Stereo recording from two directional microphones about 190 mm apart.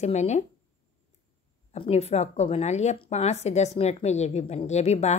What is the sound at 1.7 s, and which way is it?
Speech, 35° left (ahead or behind).